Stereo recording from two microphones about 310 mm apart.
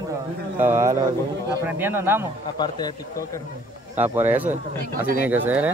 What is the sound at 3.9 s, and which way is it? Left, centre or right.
Speech, centre.